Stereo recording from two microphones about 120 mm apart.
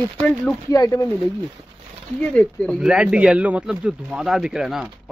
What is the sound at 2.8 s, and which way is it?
Speech, 10° right (ahead or behind).